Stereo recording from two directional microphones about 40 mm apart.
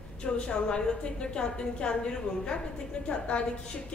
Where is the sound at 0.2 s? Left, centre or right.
Left.